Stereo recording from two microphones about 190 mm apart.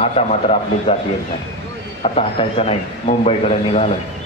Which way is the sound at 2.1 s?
30° left (ahead or behind).